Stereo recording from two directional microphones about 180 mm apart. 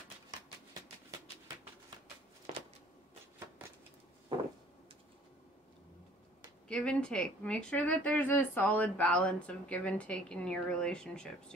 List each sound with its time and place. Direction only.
0.3 s shuffling cards: 25° right (ahead or behind)
4.3 s a sound: 25° right (ahead or behind)
6.7 s speech: 5° left (ahead or behind)